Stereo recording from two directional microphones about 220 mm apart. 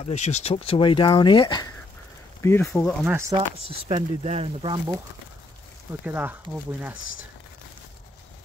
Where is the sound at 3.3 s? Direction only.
25° right (ahead or behind).